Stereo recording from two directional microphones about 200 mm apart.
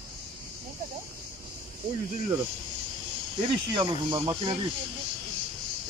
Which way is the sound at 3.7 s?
25° right (ahead or behind).